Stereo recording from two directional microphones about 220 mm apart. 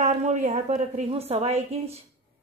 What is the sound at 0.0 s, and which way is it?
A woman's voice, 35° right (ahead or behind).